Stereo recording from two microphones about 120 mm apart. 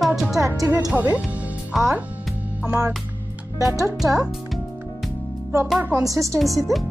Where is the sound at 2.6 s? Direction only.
15° right (ahead or behind).